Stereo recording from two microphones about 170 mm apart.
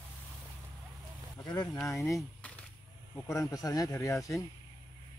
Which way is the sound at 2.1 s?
5° left (ahead or behind).